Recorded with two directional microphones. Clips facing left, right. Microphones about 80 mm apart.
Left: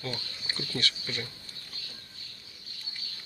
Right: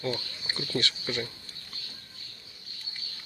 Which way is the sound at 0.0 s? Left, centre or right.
Right.